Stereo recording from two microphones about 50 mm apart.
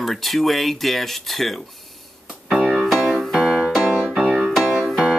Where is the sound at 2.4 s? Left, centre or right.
Centre.